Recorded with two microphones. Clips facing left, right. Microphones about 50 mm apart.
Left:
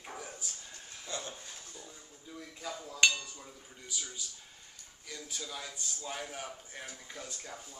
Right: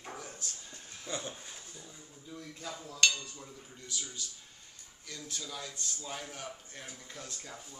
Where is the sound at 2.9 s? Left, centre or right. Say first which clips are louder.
Left 2 dB; centre.